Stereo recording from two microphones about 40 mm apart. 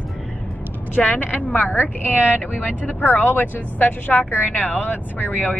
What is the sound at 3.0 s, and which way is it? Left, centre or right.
Speech, left.